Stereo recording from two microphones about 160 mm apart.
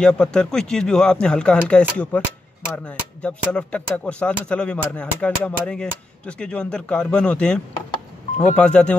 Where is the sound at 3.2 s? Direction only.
5° left (ahead or behind).